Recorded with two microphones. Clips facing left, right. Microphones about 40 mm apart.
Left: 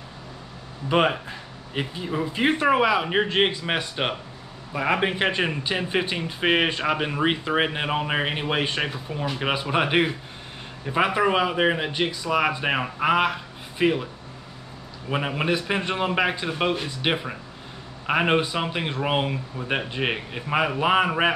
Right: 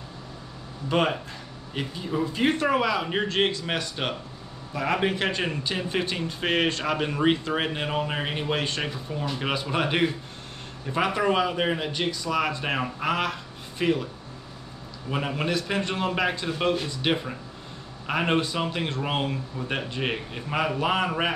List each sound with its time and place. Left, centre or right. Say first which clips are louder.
0.8 s speech: left 3 dB; left
15.0 s speech: left 3 dB; centre